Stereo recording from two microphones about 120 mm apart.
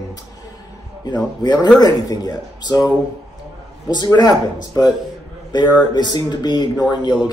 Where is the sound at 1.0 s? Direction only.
35° left (ahead or behind).